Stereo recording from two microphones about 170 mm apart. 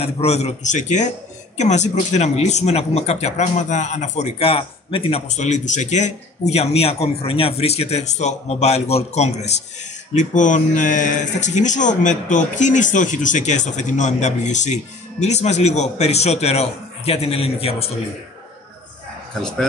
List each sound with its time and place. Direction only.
0.0 s a man's voice: 40° left (ahead or behind)